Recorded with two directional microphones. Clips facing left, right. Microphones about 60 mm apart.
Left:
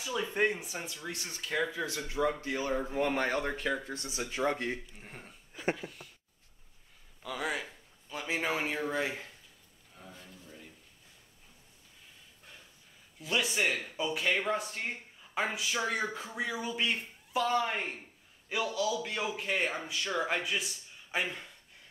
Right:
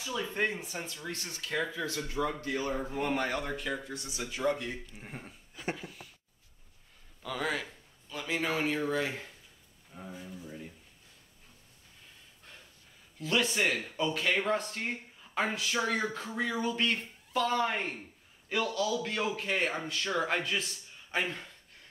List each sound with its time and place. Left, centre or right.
0.0 s speech: centre
3.2 s speech: left
4.9 s speech: centre
5.5 s a sound: left
7.2 s a man's voice: centre
8.1 s speech: centre
9.9 s speech: centre
13.2 s a man's voice: centre